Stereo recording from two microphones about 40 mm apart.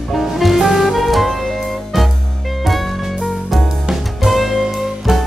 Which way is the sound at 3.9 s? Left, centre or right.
Centre.